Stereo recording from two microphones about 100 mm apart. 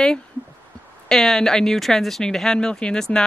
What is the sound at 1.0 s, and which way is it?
Speech, 5° left (ahead or behind).